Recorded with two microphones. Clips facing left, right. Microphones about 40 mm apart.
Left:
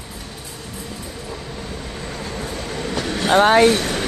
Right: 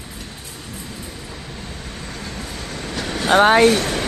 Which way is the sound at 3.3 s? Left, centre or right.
Centre.